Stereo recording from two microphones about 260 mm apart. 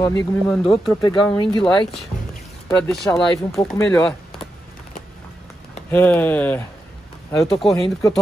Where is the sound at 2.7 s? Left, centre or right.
Centre.